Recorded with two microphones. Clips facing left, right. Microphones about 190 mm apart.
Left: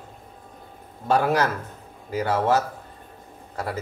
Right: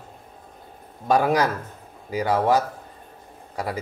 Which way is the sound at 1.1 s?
15° right (ahead or behind).